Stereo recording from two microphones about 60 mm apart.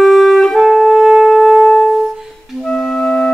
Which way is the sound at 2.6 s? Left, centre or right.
Centre.